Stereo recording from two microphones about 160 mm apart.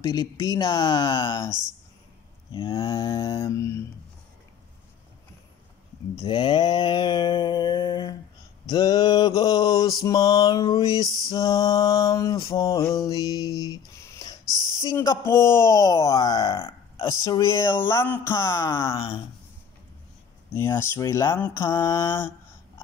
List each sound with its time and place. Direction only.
0.0 s mantra: 20° left (ahead or behind)
2.5 s mantra: 30° left (ahead or behind)
6.1 s mantra: 30° left (ahead or behind)
12.5 s a sound: 20° left (ahead or behind)
14.5 s a sound: 25° right (ahead or behind)
14.9 s mantra: 20° left (ahead or behind)
17.0 s speech: 20° left (ahead or behind)
18.8 s speech: 35° left (ahead or behind)
20.5 s speech: 15° left (ahead or behind)